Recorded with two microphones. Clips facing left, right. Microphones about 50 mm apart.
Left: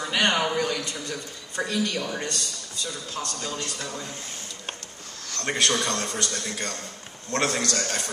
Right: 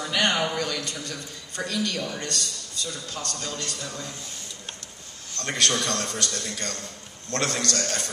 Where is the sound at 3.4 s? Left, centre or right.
Centre.